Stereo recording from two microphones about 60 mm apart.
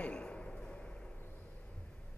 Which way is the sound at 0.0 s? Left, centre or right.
Centre.